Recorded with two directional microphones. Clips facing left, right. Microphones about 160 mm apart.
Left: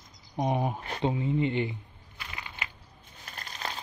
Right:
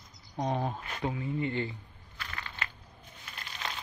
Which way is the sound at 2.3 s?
15° left (ahead or behind).